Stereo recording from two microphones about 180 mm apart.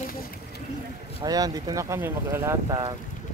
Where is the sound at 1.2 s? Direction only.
20° right (ahead or behind).